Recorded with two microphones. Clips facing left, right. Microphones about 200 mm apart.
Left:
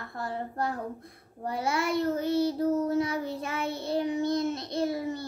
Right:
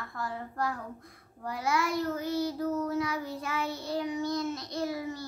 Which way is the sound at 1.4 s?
30° left (ahead or behind).